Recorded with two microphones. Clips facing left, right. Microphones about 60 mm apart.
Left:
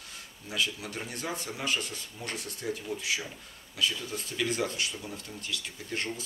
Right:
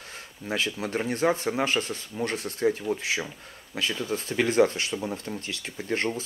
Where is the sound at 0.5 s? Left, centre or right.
Right.